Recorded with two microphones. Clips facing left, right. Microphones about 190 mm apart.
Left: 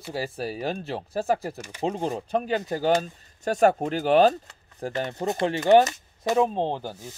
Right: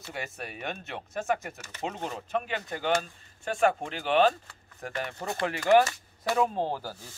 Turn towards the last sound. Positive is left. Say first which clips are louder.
# left 4 dB
turn(degrees=20)  # may be behind; listen again after turning